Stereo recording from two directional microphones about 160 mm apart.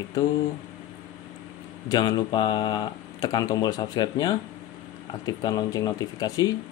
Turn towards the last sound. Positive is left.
turn(degrees=25)  # may be behind; listen again after turning